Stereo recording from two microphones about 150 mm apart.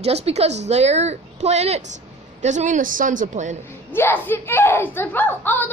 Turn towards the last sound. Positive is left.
turn(degrees=10)  # may be behind; listen again after turning